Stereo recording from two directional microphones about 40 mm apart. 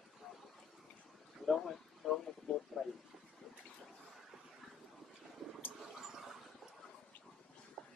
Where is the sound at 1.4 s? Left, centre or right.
Centre.